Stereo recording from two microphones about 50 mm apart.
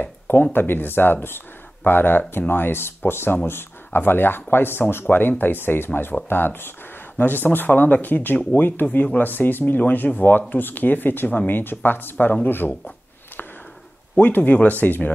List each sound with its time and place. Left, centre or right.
0.3 s speech: left
14.2 s speech: left